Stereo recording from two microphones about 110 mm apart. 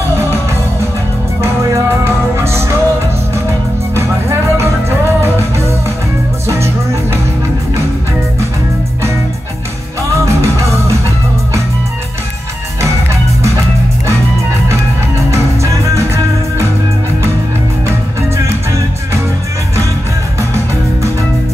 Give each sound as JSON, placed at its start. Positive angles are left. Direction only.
{"t": 1.4, "sound": "music", "side_deg": -25}
{"t": 3.9, "sound": "music", "side_deg": -25}
{"t": 6.4, "sound": "music", "side_deg": -25}
{"t": 10.2, "sound": "music", "side_deg": -25}
{"t": 15.3, "sound": "music", "side_deg": -25}